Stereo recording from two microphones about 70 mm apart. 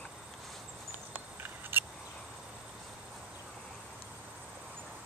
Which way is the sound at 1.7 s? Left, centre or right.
Right.